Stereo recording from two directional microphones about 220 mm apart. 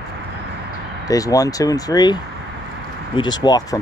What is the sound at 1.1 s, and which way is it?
Speech, 15° left (ahead or behind).